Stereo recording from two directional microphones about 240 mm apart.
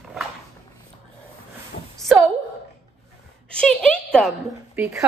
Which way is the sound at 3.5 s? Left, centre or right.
Centre.